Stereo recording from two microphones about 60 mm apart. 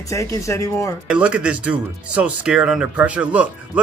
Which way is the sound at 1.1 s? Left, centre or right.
Centre.